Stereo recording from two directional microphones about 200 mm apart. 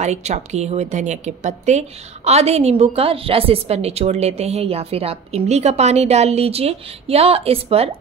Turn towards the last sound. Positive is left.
turn(degrees=-30)  # may be behind; listen again after turning